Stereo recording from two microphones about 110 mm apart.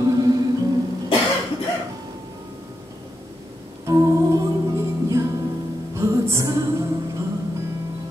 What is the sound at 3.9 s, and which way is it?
Music, 30° right (ahead or behind).